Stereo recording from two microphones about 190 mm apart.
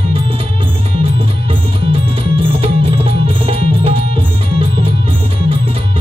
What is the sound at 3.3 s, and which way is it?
Music, 30° right (ahead or behind).